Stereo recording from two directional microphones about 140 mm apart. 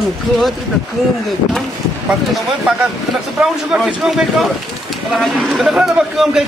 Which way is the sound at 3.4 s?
5° right (ahead or behind).